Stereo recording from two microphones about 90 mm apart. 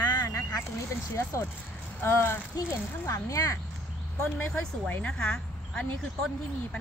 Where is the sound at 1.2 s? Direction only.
30° left (ahead or behind).